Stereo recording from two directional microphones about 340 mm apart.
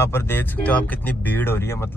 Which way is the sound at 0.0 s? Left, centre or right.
Centre.